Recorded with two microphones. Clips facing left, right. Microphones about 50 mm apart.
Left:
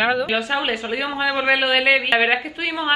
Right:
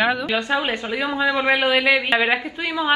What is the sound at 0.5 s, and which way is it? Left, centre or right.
Speech, centre.